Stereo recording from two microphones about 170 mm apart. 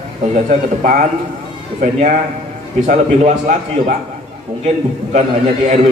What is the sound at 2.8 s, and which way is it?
A man's voice, 45° right (ahead or behind).